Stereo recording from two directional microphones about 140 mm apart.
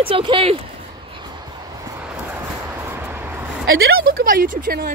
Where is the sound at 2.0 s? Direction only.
15° right (ahead or behind).